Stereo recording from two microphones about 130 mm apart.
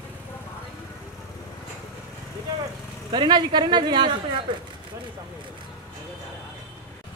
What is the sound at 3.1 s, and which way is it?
Speech, 35° right (ahead or behind).